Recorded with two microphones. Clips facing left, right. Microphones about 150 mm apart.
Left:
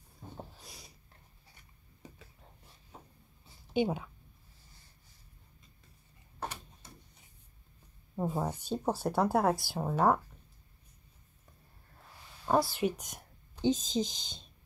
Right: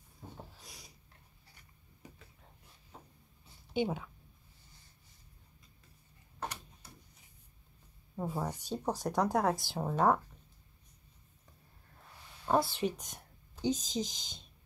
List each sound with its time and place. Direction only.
3.7 s speech: 15° left (ahead or behind)
8.2 s speech: 20° left (ahead or behind)
9.0 s speech: 10° left (ahead or behind)
12.4 s speech: 5° left (ahead or behind)
13.6 s speech: 25° left (ahead or behind)